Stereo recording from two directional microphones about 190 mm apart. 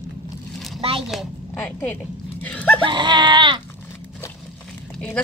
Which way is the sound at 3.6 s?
10° left (ahead or behind).